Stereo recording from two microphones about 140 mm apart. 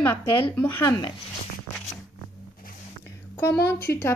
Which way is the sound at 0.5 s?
15° left (ahead or behind).